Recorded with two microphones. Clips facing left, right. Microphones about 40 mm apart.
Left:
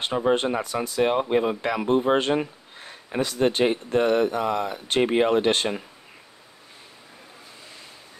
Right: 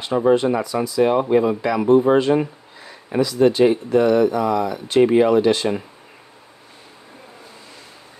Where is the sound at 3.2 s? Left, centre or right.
Left.